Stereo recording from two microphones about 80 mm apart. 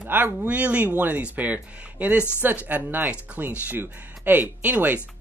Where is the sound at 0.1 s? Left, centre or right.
Right.